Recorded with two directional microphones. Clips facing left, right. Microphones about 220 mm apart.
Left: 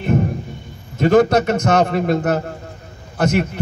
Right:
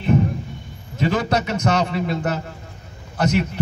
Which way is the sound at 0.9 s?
50° left (ahead or behind).